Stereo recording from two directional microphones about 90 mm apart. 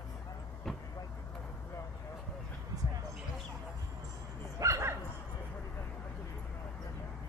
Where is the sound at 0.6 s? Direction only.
5° left (ahead or behind).